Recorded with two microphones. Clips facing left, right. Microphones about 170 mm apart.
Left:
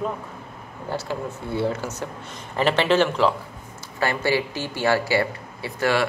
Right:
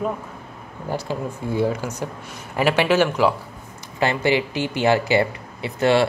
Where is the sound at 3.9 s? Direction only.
20° right (ahead or behind).